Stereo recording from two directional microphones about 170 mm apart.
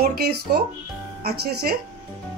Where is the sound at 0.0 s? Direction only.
65° right (ahead or behind).